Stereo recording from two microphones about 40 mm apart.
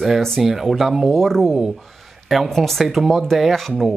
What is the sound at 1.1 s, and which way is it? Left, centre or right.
Speech, centre.